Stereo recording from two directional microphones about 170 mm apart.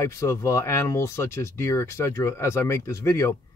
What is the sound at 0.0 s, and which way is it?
Speech, 15° left (ahead or behind).